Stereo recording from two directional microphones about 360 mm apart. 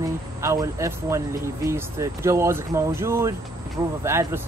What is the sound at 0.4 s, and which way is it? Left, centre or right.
Speech, centre.